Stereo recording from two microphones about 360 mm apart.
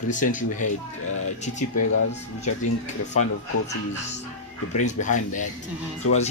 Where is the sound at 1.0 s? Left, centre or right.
Left.